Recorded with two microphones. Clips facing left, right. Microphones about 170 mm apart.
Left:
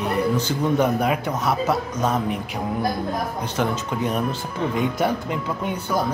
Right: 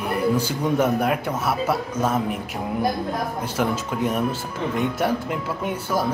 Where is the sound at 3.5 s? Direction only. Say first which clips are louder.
Even; 5° right (ahead or behind).